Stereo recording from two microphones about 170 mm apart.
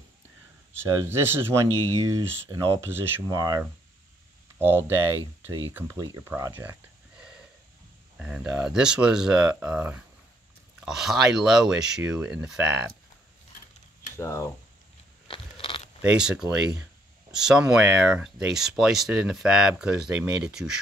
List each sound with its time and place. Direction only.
1.0 s speech: 15° right (ahead or behind)
14.1 s speech: 15° left (ahead or behind)
15.2 s crunch: 30° left (ahead or behind)
16.0 s speech: 5° right (ahead or behind)